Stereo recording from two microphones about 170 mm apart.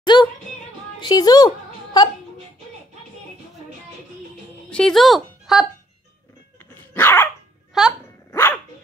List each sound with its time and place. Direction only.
0.0 s music: 25° left (ahead or behind)
1.0 s a woman's voice: 25° left (ahead or behind)
4.6 s speech: 5° left (ahead or behind)
6.6 s dog: 10° left (ahead or behind)
7.7 s speech: centre (ahead or behind)
8.3 s dog: 15° left (ahead or behind)